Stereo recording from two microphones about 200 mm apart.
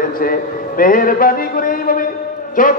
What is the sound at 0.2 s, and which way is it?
A man's voice, 45° left (ahead or behind).